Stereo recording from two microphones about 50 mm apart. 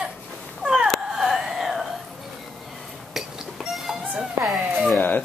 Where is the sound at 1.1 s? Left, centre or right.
Centre.